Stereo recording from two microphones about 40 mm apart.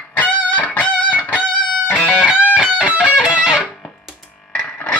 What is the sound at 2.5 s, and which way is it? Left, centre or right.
Music, right.